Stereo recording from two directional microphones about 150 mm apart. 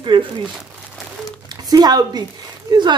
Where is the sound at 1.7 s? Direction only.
25° right (ahead or behind).